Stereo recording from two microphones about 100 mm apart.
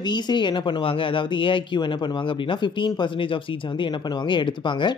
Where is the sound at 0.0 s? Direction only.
50° left (ahead or behind).